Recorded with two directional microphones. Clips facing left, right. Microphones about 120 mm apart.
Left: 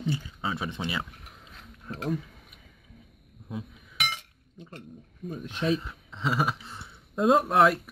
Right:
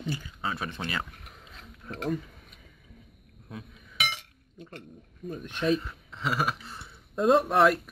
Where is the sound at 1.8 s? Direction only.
Centre (ahead or behind).